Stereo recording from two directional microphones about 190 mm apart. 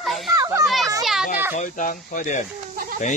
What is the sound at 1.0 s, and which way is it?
Children playing, centre (ahead or behind).